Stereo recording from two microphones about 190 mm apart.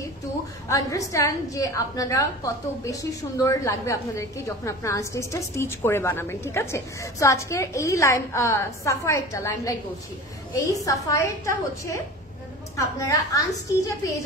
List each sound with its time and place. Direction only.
0.7 s a woman's voice: 15° left (ahead or behind)